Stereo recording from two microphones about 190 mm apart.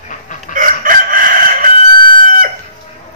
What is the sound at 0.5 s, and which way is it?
Chicken, 45° right (ahead or behind).